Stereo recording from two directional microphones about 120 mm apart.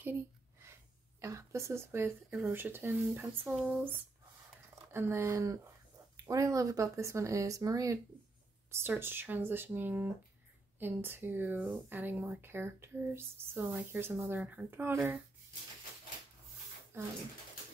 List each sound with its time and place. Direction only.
0.0 s a sound: 20° right (ahead or behind)
1.2 s speech: 25° right (ahead or behind)
4.9 s speech: 20° right (ahead or behind)
8.7 s speech: 20° right (ahead or behind)
16.9 s speech: 20° right (ahead or behind)